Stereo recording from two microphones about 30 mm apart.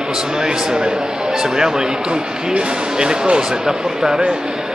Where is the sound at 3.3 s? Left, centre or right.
Right.